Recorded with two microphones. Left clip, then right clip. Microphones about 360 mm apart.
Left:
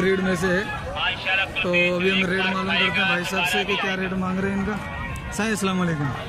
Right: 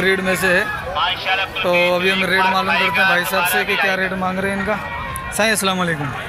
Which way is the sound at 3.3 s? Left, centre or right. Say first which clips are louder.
Right 5 dB; right.